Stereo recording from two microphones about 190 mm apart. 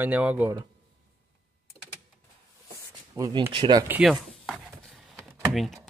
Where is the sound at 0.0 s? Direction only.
10° right (ahead or behind).